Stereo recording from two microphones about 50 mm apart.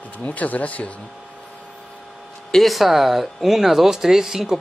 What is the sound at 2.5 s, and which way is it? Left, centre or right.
Speech, centre.